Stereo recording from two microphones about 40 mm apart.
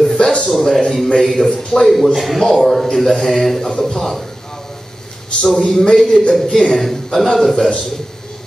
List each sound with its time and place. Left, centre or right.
0.1 s music: left
0.5 s speech: centre
0.7 s a man's voice: centre
1.2 s speech: centre
1.5 s a man's voice: centre
2.1 s speech: centre
2.4 s a man's voice: centre
5.4 s a man's voice: centre